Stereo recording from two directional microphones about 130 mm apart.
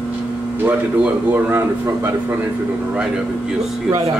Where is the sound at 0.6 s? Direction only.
15° right (ahead or behind).